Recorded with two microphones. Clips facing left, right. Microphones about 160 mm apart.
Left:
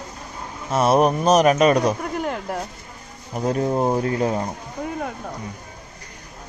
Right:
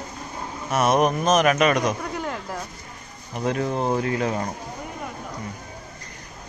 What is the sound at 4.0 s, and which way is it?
Speech, 35° left (ahead or behind).